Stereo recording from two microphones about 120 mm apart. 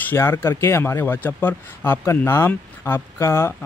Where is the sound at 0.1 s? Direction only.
20° left (ahead or behind).